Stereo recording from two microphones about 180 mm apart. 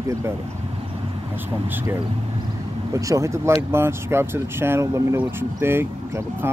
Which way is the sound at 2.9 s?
15° right (ahead or behind).